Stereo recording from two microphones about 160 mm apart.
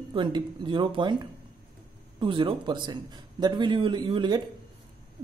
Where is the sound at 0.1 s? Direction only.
30° right (ahead or behind).